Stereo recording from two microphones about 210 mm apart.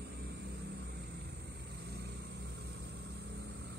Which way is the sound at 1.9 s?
50° right (ahead or behind).